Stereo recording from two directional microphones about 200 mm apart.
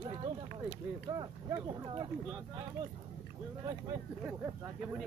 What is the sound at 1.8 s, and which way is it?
Speech, 20° right (ahead or behind).